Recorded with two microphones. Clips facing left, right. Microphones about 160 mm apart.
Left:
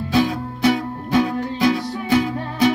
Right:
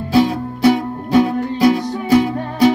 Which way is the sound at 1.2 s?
40° right (ahead or behind).